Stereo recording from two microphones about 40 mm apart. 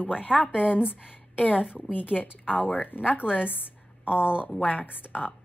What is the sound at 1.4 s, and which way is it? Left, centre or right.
Speech, left.